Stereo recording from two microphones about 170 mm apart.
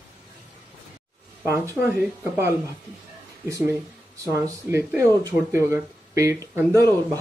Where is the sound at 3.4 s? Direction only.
20° right (ahead or behind).